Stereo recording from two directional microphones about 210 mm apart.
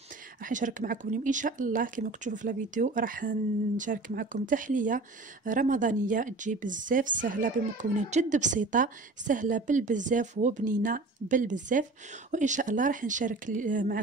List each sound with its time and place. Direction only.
0.4 s speech: 40° right (ahead or behind)